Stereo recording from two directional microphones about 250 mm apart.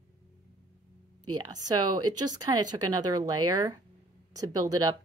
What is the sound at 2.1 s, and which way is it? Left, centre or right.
Speech, centre.